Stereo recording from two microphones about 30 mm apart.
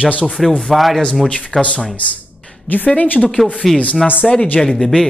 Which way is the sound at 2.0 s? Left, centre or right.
Left.